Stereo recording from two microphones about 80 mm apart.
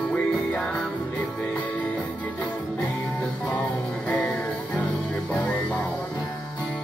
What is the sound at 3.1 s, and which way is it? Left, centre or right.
Music, centre.